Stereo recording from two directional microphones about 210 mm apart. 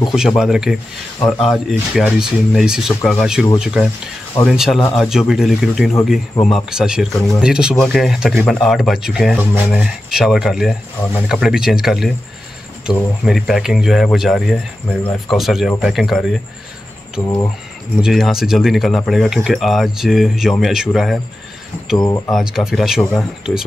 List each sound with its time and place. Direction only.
0.1 s speech: centre (ahead or behind)
18.0 s speech: centre (ahead or behind)
21.9 s speech: 15° left (ahead or behind)
22.3 s speech: centre (ahead or behind)